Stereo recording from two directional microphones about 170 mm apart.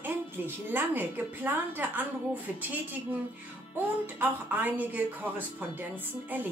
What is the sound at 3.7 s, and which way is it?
Speech, 10° right (ahead or behind).